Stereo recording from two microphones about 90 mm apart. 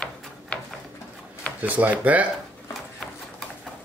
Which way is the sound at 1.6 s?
20° right (ahead or behind).